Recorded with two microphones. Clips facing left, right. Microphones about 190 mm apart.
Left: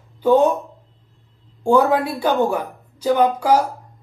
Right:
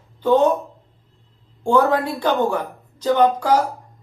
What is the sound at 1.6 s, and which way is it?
A woman's voice, 10° left (ahead or behind).